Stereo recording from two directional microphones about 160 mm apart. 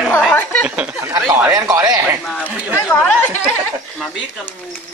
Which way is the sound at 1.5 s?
20° right (ahead or behind).